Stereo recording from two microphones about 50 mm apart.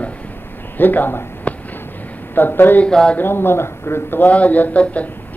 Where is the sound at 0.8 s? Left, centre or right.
Left.